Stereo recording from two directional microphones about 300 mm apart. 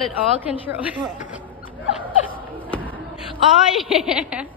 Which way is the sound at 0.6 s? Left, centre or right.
Centre.